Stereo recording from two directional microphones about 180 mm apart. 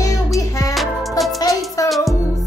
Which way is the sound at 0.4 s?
20° left (ahead or behind).